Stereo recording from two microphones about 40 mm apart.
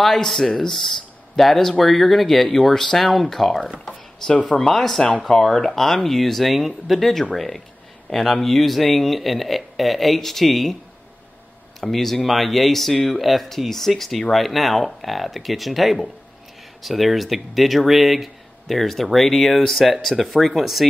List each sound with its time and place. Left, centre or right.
0.0 s speech: centre
11.8 s speech: centre